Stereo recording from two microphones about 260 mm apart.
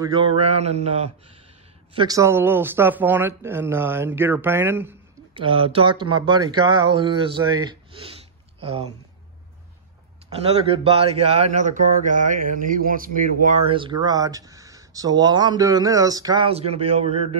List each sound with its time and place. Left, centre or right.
0.0 s speech: centre
2.0 s speech: centre
5.3 s speech: centre
10.4 s speech: right